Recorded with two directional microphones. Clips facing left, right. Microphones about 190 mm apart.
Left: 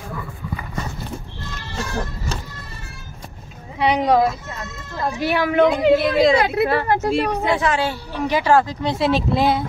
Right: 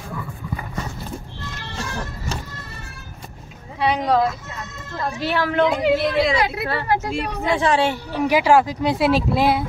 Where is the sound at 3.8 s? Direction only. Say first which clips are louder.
Left 2 dB; 20° left (ahead or behind).